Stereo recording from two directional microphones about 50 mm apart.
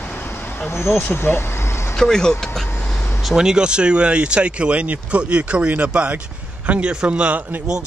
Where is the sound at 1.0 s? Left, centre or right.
Left.